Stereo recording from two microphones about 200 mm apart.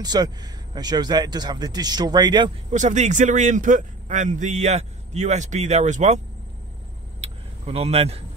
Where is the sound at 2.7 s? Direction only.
35° right (ahead or behind).